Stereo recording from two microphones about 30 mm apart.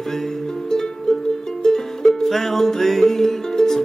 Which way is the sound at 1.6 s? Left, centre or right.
Centre.